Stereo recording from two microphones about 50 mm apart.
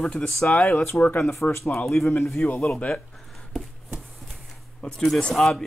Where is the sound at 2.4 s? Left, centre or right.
Left.